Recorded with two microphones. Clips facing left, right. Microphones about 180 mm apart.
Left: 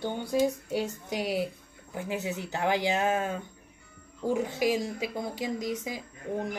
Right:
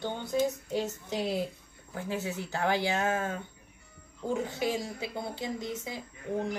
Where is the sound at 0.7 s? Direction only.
10° left (ahead or behind).